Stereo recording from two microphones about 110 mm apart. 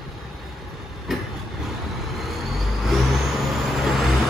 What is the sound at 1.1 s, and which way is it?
Vehicle, centre (ahead or behind).